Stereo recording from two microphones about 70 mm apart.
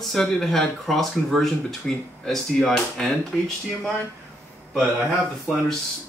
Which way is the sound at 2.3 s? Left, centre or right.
Centre.